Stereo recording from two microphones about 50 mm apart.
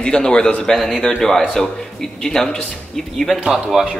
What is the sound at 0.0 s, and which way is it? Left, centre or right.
Speech, centre.